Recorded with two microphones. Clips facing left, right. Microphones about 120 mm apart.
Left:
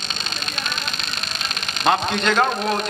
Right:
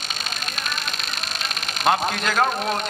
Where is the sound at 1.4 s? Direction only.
5° right (ahead or behind).